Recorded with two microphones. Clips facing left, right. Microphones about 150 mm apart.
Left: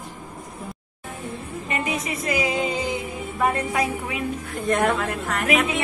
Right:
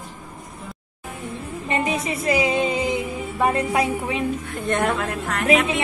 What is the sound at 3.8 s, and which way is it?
Speech, 30° right (ahead or behind).